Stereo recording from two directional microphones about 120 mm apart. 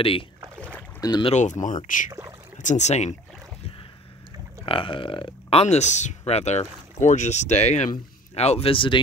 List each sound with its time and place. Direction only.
0.6 s boat: 10° left (ahead or behind)
1.3 s speech: 90° left
2.0 s speech: 25° right (ahead or behind)
2.6 s speech: 80° left
4.6 s speech: 45° left (ahead or behind); by 6.6 s 65° left (ahead or behind)
7.0 s speech: 80° left
8.4 s speech: 55° left (ahead or behind)